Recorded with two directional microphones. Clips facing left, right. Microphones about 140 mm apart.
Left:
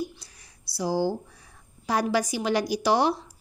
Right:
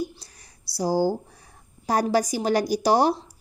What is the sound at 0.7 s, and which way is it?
A woman's voice, 40° right (ahead or behind).